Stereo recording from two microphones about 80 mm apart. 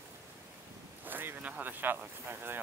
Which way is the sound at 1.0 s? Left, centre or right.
Right.